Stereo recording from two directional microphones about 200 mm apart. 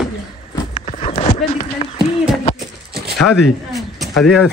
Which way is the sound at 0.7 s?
30° left (ahead or behind).